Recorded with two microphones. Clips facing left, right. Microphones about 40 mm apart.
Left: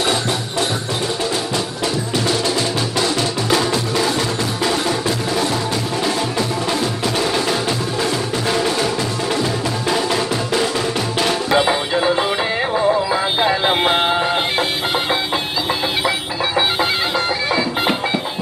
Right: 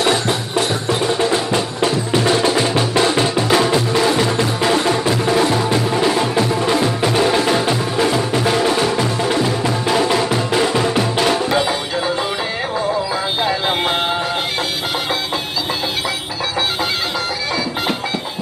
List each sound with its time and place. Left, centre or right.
0.0 s wood block: centre
1.3 s music: right
13.4 s music: centre